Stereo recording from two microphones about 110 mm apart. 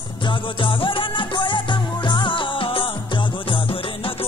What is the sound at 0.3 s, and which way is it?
Music, 50° left (ahead or behind).